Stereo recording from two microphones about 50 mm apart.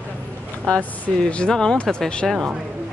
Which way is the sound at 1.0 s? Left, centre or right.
Left.